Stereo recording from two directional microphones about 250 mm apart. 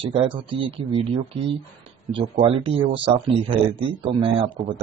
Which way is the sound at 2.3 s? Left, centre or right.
Right.